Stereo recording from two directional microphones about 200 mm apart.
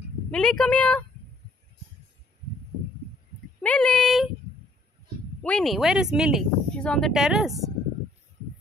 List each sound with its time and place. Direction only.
0.3 s speech: 5° left (ahead or behind)
3.6 s speech: 5° left (ahead or behind)
5.4 s speech: 5° left (ahead or behind)